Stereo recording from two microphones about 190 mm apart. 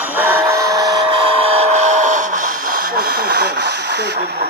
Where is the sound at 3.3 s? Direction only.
60° right (ahead or behind).